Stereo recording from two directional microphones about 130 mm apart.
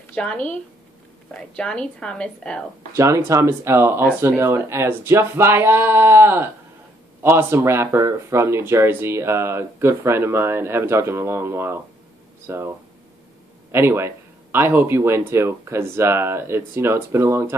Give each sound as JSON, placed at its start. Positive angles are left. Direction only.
{"t": 0.1, "sound": "a woman's voice", "side_deg": 10}
{"t": 2.9, "sound": "speech", "side_deg": -20}